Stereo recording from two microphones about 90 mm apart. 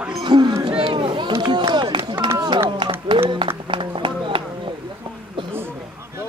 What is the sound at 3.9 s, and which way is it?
Run, 70° right (ahead or behind).